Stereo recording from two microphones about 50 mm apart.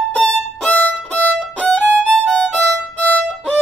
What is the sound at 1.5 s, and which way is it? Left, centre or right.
Violin, left.